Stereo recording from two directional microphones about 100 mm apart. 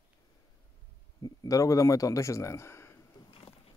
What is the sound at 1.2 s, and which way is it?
Speech, 35° left (ahead or behind).